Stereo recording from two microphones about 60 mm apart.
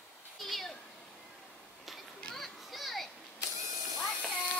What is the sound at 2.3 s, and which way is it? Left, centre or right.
Children playing, centre.